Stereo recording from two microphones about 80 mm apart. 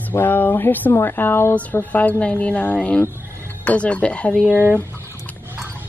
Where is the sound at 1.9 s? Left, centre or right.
Centre.